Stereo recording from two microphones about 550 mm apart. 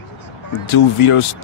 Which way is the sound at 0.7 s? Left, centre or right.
Left.